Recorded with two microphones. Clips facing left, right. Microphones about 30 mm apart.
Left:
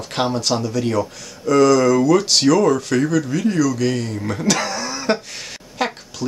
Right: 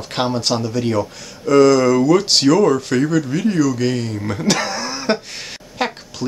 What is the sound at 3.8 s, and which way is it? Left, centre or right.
Speech, centre.